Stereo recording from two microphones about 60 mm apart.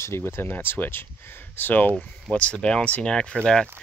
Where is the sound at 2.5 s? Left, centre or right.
Centre.